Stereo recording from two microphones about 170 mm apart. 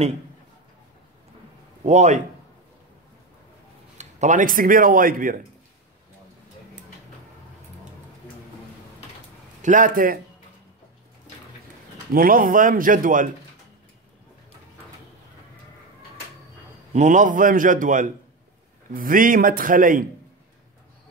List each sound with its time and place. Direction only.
1.8 s a man's voice: 45° right (ahead or behind)
4.0 s speech: 45° right (ahead or behind)
9.6 s a man's voice: 50° right (ahead or behind)
12.1 s speech: 55° right (ahead or behind)
16.9 s speech: 45° right (ahead or behind)